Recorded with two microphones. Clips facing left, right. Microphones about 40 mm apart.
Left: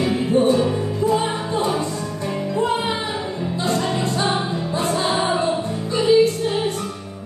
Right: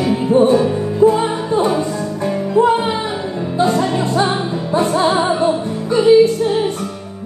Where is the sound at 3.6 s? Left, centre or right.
Right.